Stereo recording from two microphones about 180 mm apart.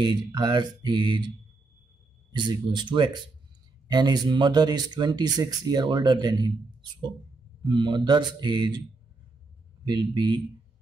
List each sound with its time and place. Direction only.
0.0 s speech: 25° right (ahead or behind)
2.3 s speech: 25° right (ahead or behind)
7.6 s speech: 25° right (ahead or behind)
9.8 s speech: 25° right (ahead or behind)